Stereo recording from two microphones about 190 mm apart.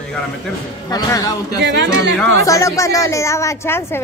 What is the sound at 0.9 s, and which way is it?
Speech, 20° left (ahead or behind).